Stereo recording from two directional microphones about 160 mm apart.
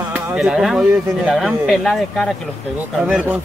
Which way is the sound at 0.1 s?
5° right (ahead or behind).